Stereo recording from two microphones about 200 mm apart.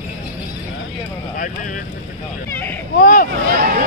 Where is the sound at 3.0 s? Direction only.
45° left (ahead or behind).